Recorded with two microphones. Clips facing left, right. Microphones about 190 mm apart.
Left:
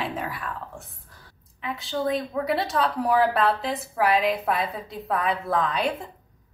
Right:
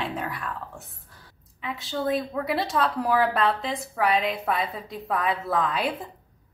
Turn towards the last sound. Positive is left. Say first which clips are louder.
# left 1 dB
turn(degrees=0)  # may be behind; listen again after turning